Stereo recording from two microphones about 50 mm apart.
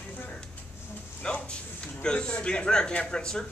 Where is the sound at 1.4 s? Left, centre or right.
Centre.